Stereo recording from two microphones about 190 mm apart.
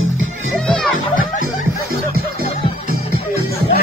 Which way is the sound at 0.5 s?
Centre (ahead or behind).